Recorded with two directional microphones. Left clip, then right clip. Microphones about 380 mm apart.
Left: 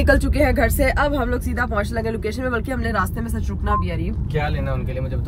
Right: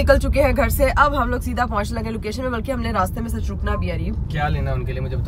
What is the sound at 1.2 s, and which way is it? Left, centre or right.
Speech, right.